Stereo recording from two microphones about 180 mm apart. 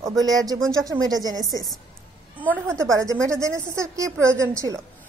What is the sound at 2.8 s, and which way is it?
A woman's voice, 15° right (ahead or behind).